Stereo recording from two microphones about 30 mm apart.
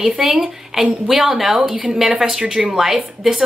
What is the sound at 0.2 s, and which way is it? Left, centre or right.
A woman's voice, centre.